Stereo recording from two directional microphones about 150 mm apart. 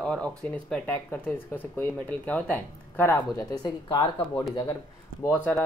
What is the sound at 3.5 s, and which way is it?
Speech, 30° left (ahead or behind).